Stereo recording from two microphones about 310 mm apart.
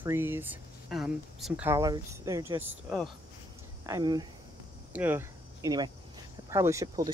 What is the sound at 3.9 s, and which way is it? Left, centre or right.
Speech, centre.